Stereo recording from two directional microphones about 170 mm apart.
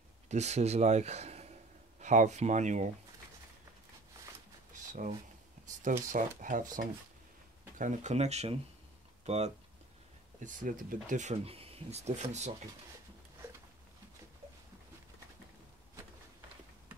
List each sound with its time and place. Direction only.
0.3 s speech: 40° right (ahead or behind)
4.7 s a sound: 50° right (ahead or behind)
6.0 s speech: 50° right (ahead or behind)
10.4 s speech: 55° right (ahead or behind)